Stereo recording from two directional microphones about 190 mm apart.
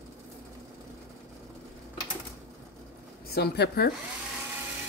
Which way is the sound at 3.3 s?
55° left (ahead or behind).